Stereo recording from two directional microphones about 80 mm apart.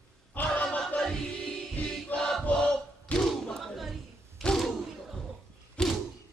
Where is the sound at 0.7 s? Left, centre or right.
Centre.